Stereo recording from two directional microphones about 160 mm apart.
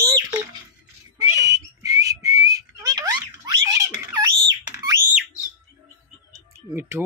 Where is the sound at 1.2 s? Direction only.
25° right (ahead or behind).